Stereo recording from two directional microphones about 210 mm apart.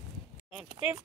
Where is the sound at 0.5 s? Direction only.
5° right (ahead or behind).